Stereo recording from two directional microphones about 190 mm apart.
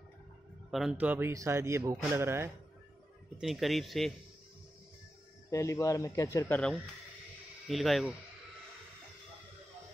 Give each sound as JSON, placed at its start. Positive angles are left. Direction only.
{"t": 0.7, "sound": "speech", "side_deg": 0}
{"t": 3.3, "sound": "speech", "side_deg": 0}
{"t": 5.5, "sound": "speech", "side_deg": 15}
{"t": 7.6, "sound": "speech", "side_deg": 0}